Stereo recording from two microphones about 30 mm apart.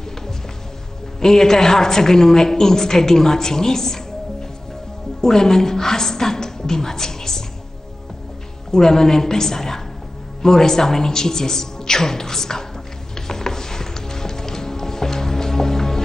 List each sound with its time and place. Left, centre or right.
1.2 s a woman's voice: centre
8.7 s a woman's voice: centre
13.3 s music: centre